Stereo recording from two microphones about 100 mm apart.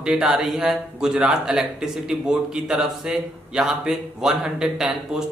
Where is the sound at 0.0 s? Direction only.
10° right (ahead or behind).